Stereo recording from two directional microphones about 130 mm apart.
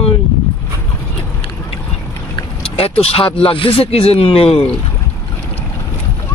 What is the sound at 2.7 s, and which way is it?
Speech, 50° left (ahead or behind).